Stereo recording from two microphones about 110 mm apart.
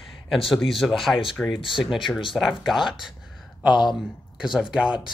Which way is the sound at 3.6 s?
45° left (ahead or behind).